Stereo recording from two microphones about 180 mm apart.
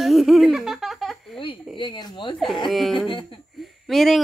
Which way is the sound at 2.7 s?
Centre (ahead or behind).